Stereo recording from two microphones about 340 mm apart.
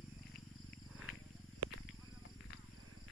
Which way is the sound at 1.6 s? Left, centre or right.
Right.